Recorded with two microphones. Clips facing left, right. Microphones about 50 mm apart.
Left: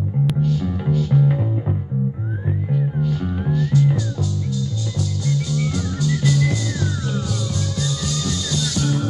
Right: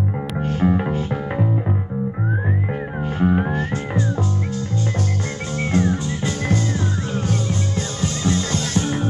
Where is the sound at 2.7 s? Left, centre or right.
Right.